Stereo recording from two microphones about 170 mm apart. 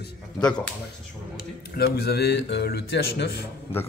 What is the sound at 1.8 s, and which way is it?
Speech, 70° left (ahead or behind).